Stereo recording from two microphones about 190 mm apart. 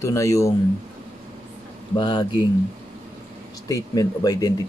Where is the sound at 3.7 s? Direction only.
20° left (ahead or behind).